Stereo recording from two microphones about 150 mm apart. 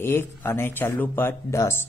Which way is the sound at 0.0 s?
15° left (ahead or behind).